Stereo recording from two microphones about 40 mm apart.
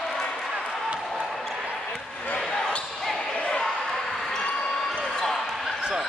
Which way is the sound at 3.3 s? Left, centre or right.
Left.